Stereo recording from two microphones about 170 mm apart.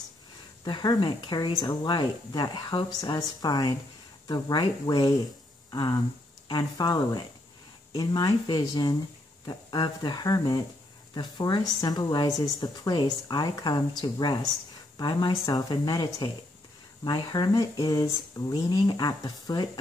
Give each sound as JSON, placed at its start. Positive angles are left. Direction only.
{"t": 0.7, "sound": "speech", "side_deg": 25}